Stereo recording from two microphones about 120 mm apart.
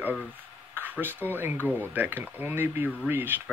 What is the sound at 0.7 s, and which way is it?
Speech, 15° right (ahead or behind).